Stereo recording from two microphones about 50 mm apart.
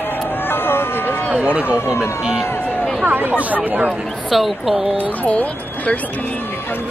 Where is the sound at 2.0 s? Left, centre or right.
Centre.